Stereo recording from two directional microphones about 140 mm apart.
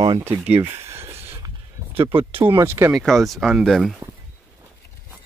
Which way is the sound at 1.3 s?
40° right (ahead or behind).